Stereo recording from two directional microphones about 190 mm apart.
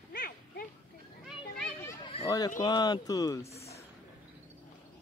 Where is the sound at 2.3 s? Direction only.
20° left (ahead or behind).